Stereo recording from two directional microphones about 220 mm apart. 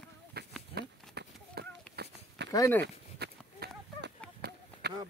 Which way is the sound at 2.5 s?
15° left (ahead or behind).